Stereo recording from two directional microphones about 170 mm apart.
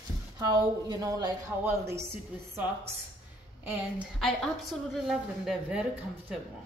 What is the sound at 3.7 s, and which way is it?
A woman's voice, 10° right (ahead or behind).